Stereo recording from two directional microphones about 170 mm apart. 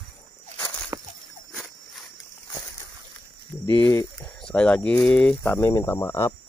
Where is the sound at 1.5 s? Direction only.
10° right (ahead or behind).